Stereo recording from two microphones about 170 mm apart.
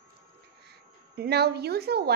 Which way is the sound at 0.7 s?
70° right (ahead or behind).